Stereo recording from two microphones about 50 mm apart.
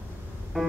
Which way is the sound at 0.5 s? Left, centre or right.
Centre.